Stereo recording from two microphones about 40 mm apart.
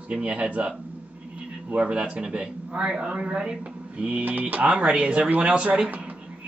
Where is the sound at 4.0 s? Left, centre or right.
Right.